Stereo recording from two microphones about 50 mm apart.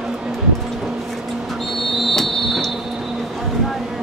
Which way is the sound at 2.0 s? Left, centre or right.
Centre.